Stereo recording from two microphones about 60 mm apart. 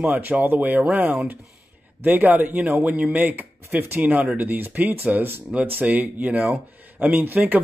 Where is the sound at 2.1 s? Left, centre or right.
Right.